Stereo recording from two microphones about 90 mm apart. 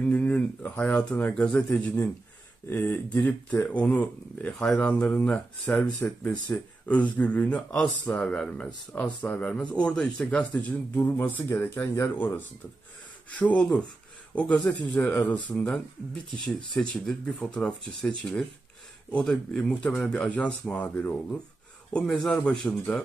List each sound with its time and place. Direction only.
0.0 s a sound: 15° left (ahead or behind)
0.7 s speech: 10° left (ahead or behind)
10.6 s speech: 20° left (ahead or behind); by 20.2 s 5° left (ahead or behind)
20.2 s speech: 15° left (ahead or behind)